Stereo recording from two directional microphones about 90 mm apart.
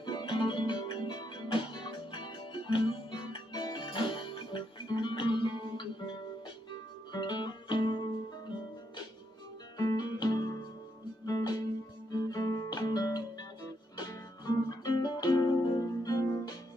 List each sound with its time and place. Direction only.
0.0 s music: 55° left (ahead or behind)
6.7 s guitar: 55° left (ahead or behind)
9.8 s music: 45° left (ahead or behind)
12.1 s guitar: 45° left (ahead or behind)
13.9 s music: 50° left (ahead or behind)